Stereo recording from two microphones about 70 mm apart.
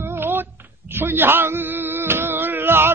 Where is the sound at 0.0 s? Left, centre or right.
Right.